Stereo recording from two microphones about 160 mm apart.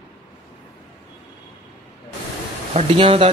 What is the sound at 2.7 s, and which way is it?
Speech, 35° right (ahead or behind).